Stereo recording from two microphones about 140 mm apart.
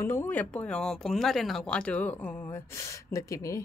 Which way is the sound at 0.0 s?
15° left (ahead or behind).